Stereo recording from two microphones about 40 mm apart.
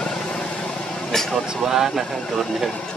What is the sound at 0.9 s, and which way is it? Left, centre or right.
Vehicle, centre.